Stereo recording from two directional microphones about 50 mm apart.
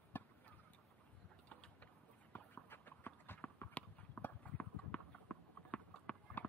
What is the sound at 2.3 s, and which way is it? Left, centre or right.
Clip-clop, left.